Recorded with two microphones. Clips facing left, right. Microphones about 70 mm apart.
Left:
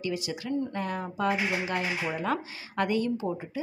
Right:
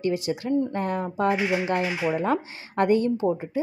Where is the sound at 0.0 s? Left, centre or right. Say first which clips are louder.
Right 7 dB; right.